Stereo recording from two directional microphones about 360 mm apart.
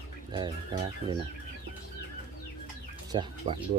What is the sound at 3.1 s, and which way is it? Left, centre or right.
Bird, centre.